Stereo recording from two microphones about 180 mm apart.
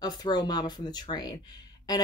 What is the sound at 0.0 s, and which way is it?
Speech, 25° left (ahead or behind).